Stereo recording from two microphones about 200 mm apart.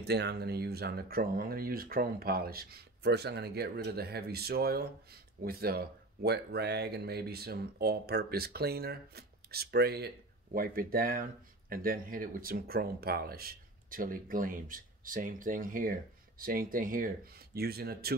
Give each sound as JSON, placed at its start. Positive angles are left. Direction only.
{"t": 0.0, "sound": "speech", "side_deg": -55}